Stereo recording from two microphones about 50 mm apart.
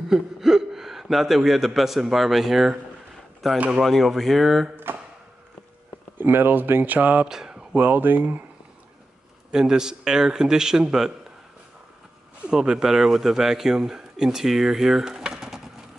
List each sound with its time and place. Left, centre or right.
0.1 s speech: centre
3.5 s speech: right
3.8 s speech: centre
4.9 s a sound: right
6.1 s speech: right
7.2 s a sound: centre
7.7 s speech: right
9.5 s a man's voice: centre
12.4 s a man's voice: centre